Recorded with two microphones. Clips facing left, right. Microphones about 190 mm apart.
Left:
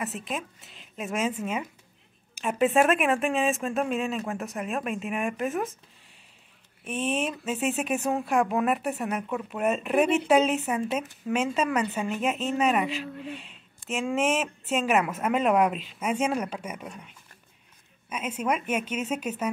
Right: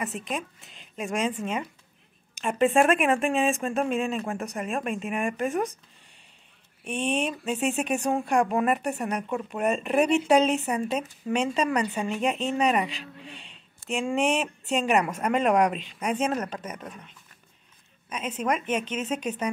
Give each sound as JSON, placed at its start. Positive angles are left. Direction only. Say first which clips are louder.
{"t": 0.0, "sound": "speech", "louder": "right 1 dB", "side_deg": 0}
{"t": 6.8, "sound": "speech", "louder": "right 1 dB", "side_deg": 5}
{"t": 18.1, "sound": "a woman's voice", "louder": "even", "side_deg": 5}